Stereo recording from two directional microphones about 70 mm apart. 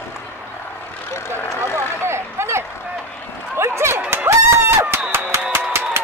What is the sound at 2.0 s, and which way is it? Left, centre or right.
Vehicle, right.